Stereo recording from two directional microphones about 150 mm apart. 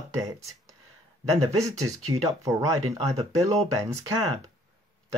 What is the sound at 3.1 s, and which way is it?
Speech, 25° right (ahead or behind).